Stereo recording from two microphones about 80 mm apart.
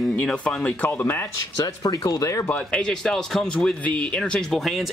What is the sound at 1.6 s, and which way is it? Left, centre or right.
Speech, left.